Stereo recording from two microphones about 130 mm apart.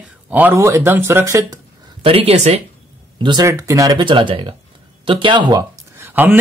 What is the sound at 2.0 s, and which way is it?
Speech, 50° right (ahead or behind).